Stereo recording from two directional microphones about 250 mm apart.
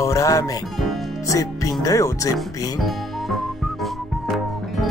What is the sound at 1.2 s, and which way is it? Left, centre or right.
Speech, centre.